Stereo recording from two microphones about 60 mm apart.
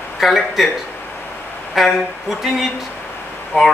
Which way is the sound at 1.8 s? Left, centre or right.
Centre.